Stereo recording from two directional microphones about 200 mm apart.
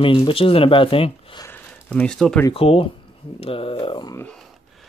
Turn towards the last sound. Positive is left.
turn(degrees=25)  # may be behind; listen again after turning